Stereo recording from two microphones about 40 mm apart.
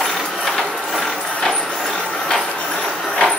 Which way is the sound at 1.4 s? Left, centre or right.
Centre.